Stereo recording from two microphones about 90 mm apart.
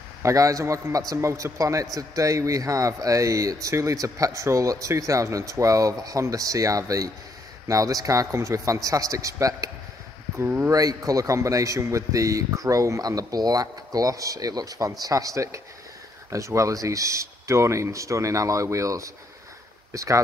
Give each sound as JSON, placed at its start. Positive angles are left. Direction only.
{"t": 0.2, "sound": "a man's voice", "side_deg": -35}
{"t": 10.3, "sound": "speech", "side_deg": -25}
{"t": 10.7, "sound": "a man's voice", "side_deg": -40}